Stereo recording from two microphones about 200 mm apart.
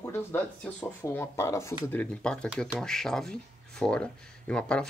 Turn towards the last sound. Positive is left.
turn(degrees=5)  # may be behind; listen again after turning